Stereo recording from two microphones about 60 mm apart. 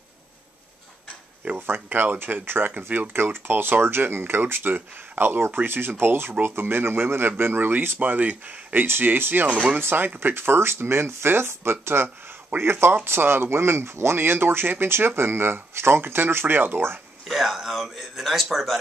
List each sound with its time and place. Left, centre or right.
1.7 s speech: right
17.3 s speech: centre